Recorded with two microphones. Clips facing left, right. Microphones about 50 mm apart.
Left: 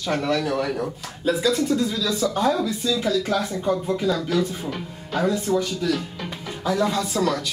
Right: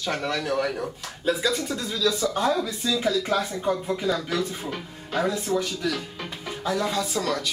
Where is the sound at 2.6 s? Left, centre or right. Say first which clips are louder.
Left 2 dB; centre.